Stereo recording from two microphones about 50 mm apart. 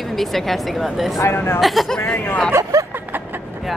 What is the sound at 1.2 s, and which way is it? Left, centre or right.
Speech, left.